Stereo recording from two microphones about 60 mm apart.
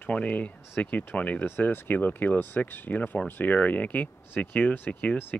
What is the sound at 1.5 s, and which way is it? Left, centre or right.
Speech, left.